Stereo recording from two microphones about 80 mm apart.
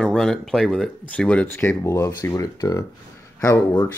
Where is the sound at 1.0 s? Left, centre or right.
Centre; by 2.8 s left.